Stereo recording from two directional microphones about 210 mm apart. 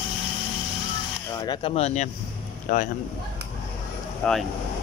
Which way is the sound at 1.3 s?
20° left (ahead or behind).